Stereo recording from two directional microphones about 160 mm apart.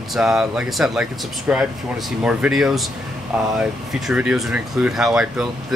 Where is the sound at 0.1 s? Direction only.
5° right (ahead or behind).